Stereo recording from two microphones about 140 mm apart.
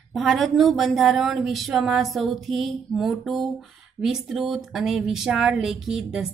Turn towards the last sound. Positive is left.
turn(degrees=0)  # may be behind; listen again after turning